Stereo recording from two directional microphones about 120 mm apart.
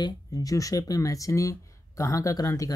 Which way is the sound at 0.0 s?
30° left (ahead or behind).